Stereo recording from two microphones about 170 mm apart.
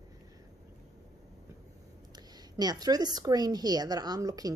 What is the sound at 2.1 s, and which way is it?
A woman's voice, 25° right (ahead or behind).